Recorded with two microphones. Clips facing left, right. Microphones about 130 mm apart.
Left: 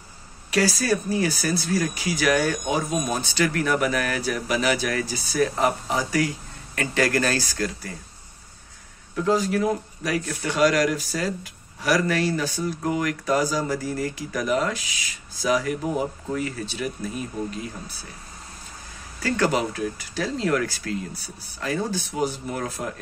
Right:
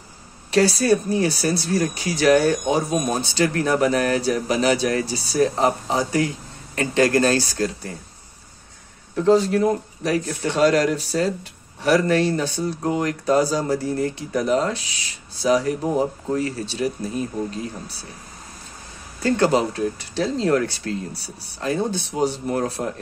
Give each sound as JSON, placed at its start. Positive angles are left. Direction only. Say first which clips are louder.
{"t": 0.5, "sound": "speech", "louder": "right 5 dB", "side_deg": -30}
{"t": 9.1, "sound": "speech", "louder": "right 5 dB", "side_deg": -30}
{"t": 19.2, "sound": "speech", "louder": "right 4 dB", "side_deg": -25}